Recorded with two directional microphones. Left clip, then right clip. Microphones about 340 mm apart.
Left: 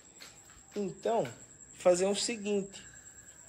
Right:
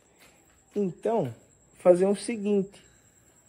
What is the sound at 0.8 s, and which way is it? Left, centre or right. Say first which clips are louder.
Speech: right 4 dB; right.